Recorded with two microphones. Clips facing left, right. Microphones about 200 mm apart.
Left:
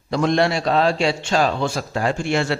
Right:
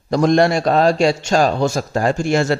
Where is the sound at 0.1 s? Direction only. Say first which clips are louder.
Right 5 dB; 45° right (ahead or behind).